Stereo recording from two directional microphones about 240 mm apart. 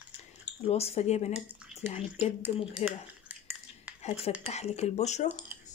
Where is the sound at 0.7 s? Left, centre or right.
Left.